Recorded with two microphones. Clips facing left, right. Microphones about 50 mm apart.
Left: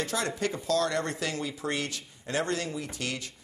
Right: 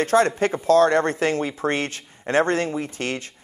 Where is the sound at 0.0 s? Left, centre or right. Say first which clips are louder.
Right 12 dB; right.